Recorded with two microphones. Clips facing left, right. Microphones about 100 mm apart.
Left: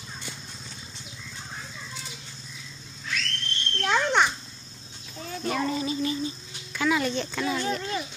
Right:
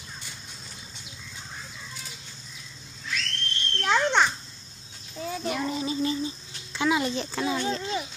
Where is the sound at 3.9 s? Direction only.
5° left (ahead or behind).